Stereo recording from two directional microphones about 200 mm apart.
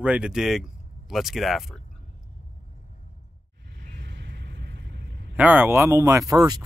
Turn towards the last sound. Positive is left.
turn(degrees=-20)  # may be behind; listen again after turning